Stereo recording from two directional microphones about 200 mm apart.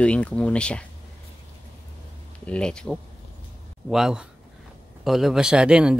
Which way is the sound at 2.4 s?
5° left (ahead or behind).